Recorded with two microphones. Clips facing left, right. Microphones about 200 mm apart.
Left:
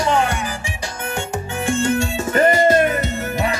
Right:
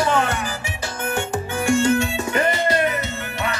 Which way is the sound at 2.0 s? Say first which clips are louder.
Left 4 dB; 45° left (ahead or behind).